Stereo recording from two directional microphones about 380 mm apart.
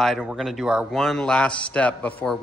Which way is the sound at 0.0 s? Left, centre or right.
Centre.